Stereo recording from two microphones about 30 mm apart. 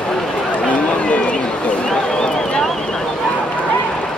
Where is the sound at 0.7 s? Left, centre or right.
Left.